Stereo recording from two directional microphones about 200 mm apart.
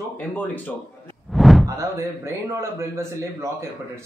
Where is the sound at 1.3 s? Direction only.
Centre (ahead or behind).